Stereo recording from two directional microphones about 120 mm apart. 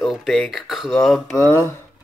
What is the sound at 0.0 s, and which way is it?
Speech, centre (ahead or behind).